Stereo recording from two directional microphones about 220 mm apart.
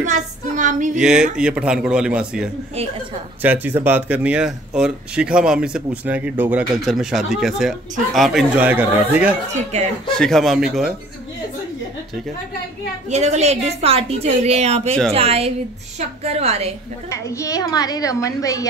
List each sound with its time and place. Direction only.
0.0 s a woman's voice: 35° right (ahead or behind)
0.9 s speech: 5° right (ahead or behind)
9.5 s speech: 30° right (ahead or behind)
10.0 s speech: 5° left (ahead or behind)
13.1 s a woman's voice: 30° right (ahead or behind)
17.1 s a woman's voice: 15° left (ahead or behind)